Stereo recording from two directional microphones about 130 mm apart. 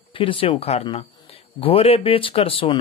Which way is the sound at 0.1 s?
45° left (ahead or behind).